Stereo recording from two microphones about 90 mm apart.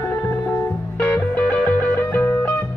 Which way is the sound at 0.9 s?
15° left (ahead or behind).